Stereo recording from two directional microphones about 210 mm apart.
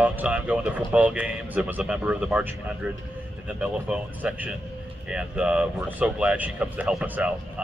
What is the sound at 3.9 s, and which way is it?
Speech, 5° right (ahead or behind).